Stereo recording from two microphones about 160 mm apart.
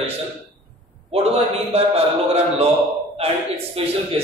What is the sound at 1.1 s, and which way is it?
A man's voice, 40° right (ahead or behind).